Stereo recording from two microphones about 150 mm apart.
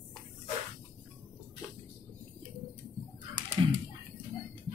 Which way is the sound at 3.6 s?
30° right (ahead or behind).